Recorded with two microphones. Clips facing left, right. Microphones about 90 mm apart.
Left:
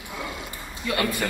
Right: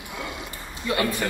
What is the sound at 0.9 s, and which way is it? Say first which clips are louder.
Speech: right 1 dB; 25° right (ahead or behind).